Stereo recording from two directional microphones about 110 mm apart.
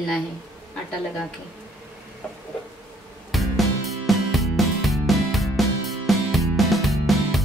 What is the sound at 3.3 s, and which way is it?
Music, centre (ahead or behind).